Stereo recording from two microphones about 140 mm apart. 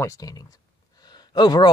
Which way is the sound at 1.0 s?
30° left (ahead or behind).